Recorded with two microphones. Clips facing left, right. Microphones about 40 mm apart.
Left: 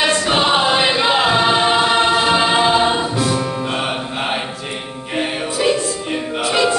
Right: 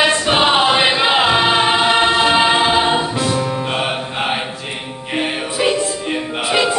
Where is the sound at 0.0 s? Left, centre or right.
Centre.